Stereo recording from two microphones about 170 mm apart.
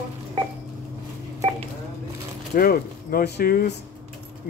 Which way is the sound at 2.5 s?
60° left (ahead or behind).